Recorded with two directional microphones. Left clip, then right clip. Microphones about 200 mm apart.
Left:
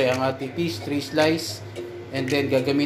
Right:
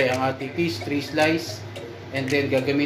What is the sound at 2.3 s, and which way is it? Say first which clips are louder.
Speech: even; 25° left (ahead or behind).